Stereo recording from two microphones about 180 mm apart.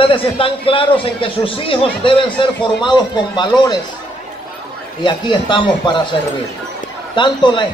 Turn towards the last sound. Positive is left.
turn(degrees=25)  # may be behind; listen again after turning